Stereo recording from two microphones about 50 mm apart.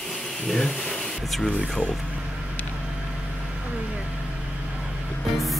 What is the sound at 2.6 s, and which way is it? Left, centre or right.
Vehicle, left.